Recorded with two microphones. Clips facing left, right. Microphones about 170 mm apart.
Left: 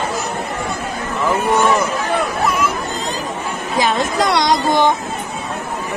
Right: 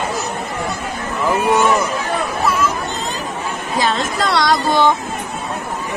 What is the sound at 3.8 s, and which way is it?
Speech, 15° left (ahead or behind).